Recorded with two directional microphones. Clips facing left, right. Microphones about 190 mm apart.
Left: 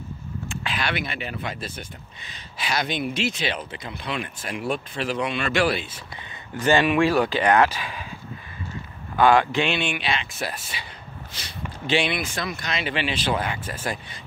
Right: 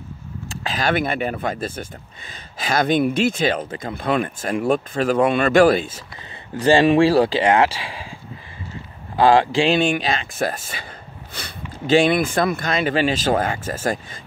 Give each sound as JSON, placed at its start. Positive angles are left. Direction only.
{"t": 0.5, "sound": "speech", "side_deg": -40}
{"t": 6.6, "sound": "speech", "side_deg": -30}
{"t": 9.1, "sound": "speech", "side_deg": -30}
{"t": 9.8, "sound": "speech", "side_deg": -40}